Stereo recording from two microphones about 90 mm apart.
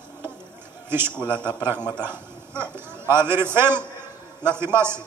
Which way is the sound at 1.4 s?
25° right (ahead or behind).